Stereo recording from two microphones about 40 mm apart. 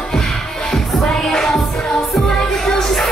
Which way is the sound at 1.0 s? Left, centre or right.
Centre.